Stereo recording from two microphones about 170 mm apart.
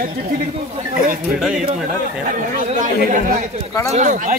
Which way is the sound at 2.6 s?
50° right (ahead or behind).